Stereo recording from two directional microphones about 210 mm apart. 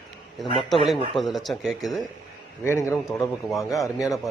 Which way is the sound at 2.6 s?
10° left (ahead or behind).